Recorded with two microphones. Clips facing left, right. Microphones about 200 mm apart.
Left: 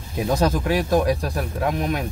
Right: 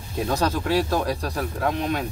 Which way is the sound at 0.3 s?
15° left (ahead or behind).